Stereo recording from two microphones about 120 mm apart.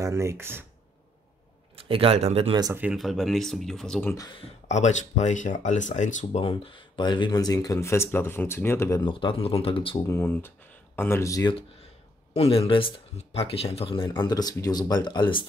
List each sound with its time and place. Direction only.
0.0 s speech: 25° right (ahead or behind)
1.9 s speech: 50° right (ahead or behind)
2.7 s speech: 15° right (ahead or behind)
3.0 s speech: centre (ahead or behind)
4.6 s speech: 75° left (ahead or behind)
6.4 s speech: 45° left (ahead or behind); by 9.0 s 20° left (ahead or behind)
9.0 s speech: 45° left (ahead or behind)
10.0 s speech: 20° left (ahead or behind)
12.4 s speech: 55° left (ahead or behind)
13.2 s speech: 55° left (ahead or behind); by 15.4 s 40° left (ahead or behind)